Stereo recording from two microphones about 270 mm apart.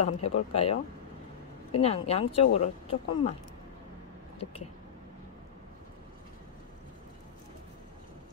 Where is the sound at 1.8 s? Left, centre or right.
Left.